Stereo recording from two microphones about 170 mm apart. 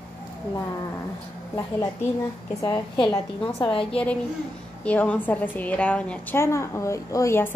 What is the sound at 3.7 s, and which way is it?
Speech, 30° left (ahead or behind).